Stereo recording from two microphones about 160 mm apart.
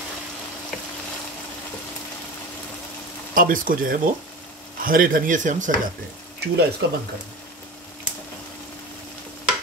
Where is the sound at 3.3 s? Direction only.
60° right (ahead or behind).